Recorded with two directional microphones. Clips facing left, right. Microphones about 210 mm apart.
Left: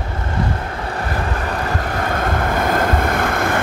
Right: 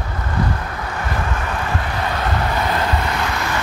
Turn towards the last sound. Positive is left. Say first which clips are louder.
# left 4 dB
turn(degrees=50)  # may be behind; listen again after turning